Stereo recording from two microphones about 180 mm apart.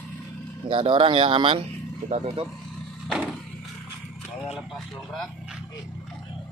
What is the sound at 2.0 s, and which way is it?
Speech, 40° right (ahead or behind).